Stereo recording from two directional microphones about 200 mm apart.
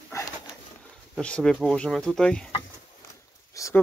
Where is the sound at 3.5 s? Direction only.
15° left (ahead or behind).